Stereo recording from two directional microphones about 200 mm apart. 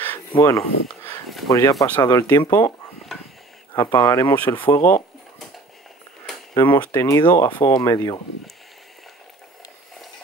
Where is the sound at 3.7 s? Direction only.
20° left (ahead or behind).